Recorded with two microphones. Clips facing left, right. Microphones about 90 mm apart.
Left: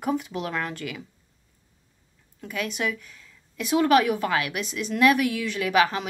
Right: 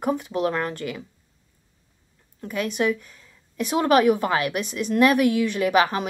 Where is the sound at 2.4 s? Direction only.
40° right (ahead or behind).